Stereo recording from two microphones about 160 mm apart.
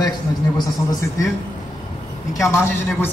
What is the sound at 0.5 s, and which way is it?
Speech, 25° left (ahead or behind).